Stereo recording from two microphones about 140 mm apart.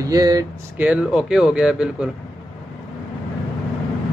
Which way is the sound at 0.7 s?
5° right (ahead or behind).